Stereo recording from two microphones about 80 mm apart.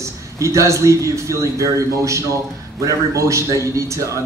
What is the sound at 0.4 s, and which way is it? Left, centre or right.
A man's voice, right.